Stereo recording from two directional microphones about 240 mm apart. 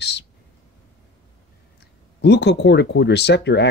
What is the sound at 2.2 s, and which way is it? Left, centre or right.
Speech, left.